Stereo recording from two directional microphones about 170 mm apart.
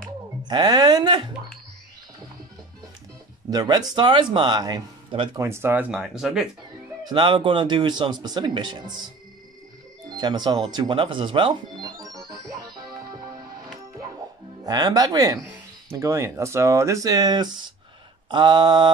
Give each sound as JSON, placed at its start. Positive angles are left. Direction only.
{"t": 0.5, "sound": "speech", "side_deg": -25}
{"t": 3.4, "sound": "speech", "side_deg": -20}
{"t": 5.4, "sound": "speech", "side_deg": -15}
{"t": 7.1, "sound": "speech", "side_deg": -30}
{"t": 10.0, "sound": "speech", "side_deg": -25}
{"t": 12.3, "sound": "music", "side_deg": -25}
{"t": 14.6, "sound": "speech", "side_deg": -25}